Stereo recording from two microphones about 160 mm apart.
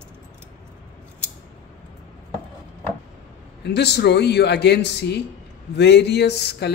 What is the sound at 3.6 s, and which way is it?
Speech, 90° left.